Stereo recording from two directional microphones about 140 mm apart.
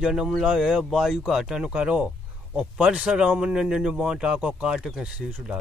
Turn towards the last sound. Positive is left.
turn(degrees=-5)  # may be behind; listen again after turning